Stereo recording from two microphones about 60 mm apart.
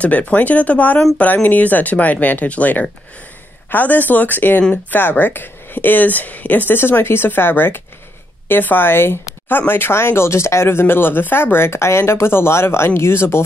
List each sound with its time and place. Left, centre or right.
0.0 s a woman's voice: left